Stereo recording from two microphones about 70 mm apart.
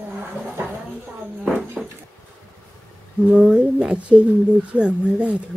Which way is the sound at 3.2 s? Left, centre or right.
Centre.